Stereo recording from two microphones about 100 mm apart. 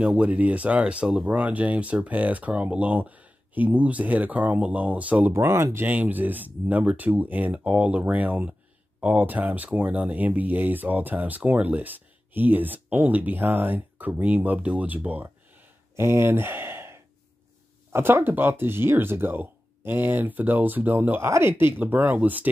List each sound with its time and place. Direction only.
0.0 s speech: 10° right (ahead or behind)
5.3 s speech: 25° right (ahead or behind)
5.9 s speech: 15° right (ahead or behind)